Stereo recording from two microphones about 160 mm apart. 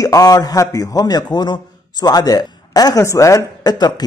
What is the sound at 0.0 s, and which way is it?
Speech, 20° left (ahead or behind).